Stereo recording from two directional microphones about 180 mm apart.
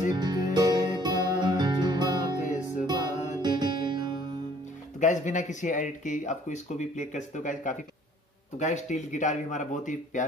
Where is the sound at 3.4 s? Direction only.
25° right (ahead or behind).